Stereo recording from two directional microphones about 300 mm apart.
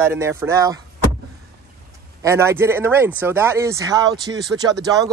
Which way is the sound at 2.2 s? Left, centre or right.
Centre.